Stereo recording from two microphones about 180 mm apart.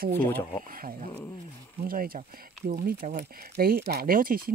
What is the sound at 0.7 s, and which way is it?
Speech, 50° right (ahead or behind).